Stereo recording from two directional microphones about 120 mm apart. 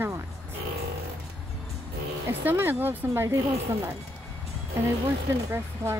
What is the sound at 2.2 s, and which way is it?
Speech, 20° right (ahead or behind).